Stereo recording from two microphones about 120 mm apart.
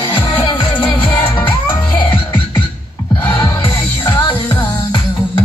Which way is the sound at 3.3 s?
45° left (ahead or behind).